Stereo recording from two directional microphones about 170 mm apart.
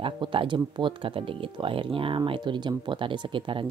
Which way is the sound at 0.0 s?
30° right (ahead or behind).